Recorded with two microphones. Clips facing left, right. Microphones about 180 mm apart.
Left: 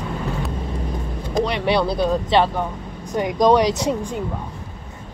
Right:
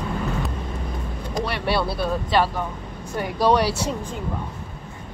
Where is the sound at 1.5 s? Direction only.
20° left (ahead or behind).